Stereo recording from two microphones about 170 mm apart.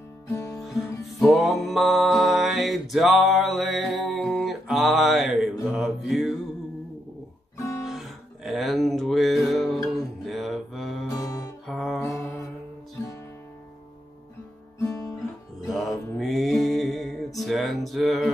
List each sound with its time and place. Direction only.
0.3 s guitar: 15° left (ahead or behind)
0.7 s music: centre (ahead or behind)
7.5 s guitar: 15° left (ahead or behind)
8.5 s music: centre (ahead or behind)
10.2 s mantra: centre (ahead or behind)
11.1 s music: 20° left (ahead or behind)
11.6 s music: centre (ahead or behind)
12.0 s mantra: 15° left (ahead or behind)
14.8 s guitar: 20° left (ahead or behind)
15.6 s music: centre (ahead or behind)